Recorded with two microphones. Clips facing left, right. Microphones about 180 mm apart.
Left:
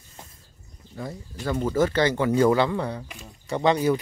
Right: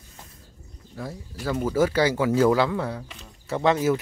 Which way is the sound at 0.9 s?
5° right (ahead or behind).